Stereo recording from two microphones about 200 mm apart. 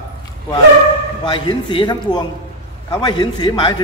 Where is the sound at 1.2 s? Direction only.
25° left (ahead or behind).